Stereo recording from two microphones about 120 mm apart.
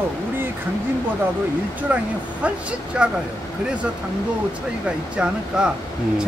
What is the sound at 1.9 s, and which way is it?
Speech, 10° right (ahead or behind).